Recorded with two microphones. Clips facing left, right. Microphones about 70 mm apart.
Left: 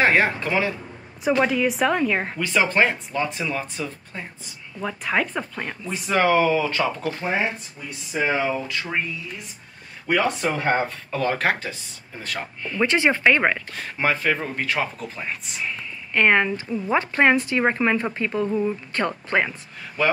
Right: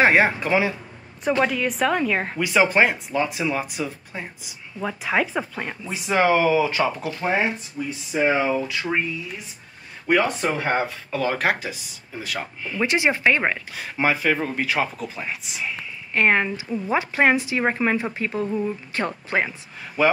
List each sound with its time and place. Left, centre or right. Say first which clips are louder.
0.0 s speech: right 2 dB; centre
1.4 s speech: left 1 dB; centre
2.3 s speech: right 5 dB; centre
7.2 s speech: right 4 dB; centre
8.3 s speech: right 2 dB; centre
10.0 s speech: right 1 dB; centre
12.8 s speech: left 1 dB; centre